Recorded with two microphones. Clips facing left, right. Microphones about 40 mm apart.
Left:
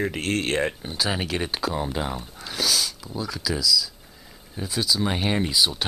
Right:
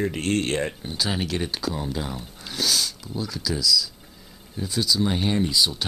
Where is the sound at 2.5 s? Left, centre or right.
Centre.